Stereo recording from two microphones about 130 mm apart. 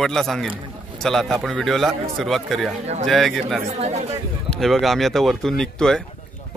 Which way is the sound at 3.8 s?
55° right (ahead or behind).